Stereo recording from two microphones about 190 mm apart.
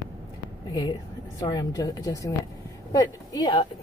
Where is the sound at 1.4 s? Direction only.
20° left (ahead or behind).